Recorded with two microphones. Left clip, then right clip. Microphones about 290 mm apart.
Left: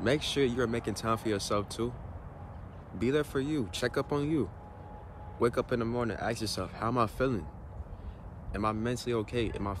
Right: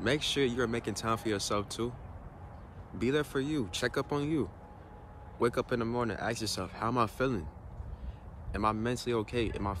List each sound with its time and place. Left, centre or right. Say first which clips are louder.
0.0 s speech: left 1 dB; centre
3.0 s speech: left 1 dB; centre
8.5 s speech: right 1 dB; centre